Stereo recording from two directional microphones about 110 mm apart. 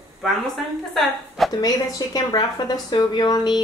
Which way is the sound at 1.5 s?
35° left (ahead or behind).